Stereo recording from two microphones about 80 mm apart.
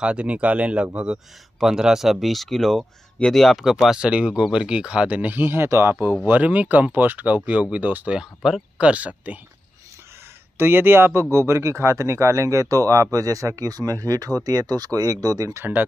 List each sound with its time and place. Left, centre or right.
0.0 s speech: centre
3.7 s speech: centre; by 5.9 s right
6.2 s speech: centre
10.6 s speech: right